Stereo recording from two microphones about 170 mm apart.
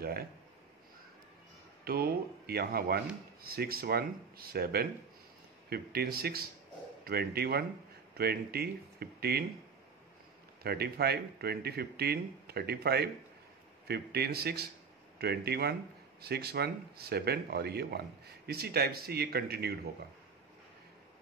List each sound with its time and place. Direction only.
0.0 s a sound: 65° right (ahead or behind)
1.9 s speech: 65° right (ahead or behind)
10.6 s speech: 70° right (ahead or behind)